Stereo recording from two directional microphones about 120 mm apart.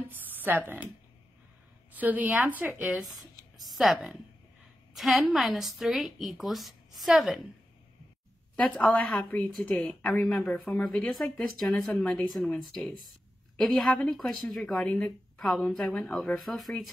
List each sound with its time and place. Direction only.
0.3 s speech: 15° right (ahead or behind)
2.0 s a woman's voice: 15° right (ahead or behind)
8.5 s speech: 5° left (ahead or behind)
9.3 s speech: 15° left (ahead or behind)